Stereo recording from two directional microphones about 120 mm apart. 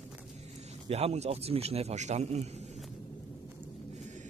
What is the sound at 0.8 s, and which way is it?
A man's voice, 60° right (ahead or behind).